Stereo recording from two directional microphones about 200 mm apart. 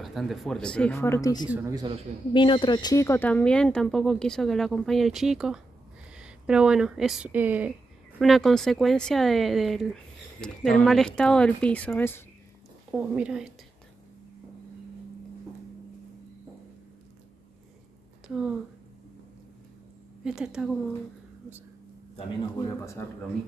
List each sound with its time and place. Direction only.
0.0 s speech: centre (ahead or behind); by 1.5 s 20° left (ahead or behind)
1.5 s speech: 15° right (ahead or behind)
2.3 s speech: 25° left (ahead or behind); by 12.2 s 10° left (ahead or behind)
12.9 s speech: 5° right (ahead or behind)
20.2 s speech: 5° right (ahead or behind)
23.0 s speech: 10° left (ahead or behind)